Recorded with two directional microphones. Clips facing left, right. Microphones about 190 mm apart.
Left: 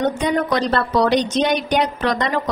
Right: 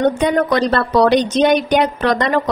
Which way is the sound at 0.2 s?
60° right (ahead or behind).